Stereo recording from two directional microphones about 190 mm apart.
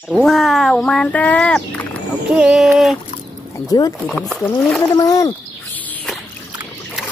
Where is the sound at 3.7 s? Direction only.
20° left (ahead or behind).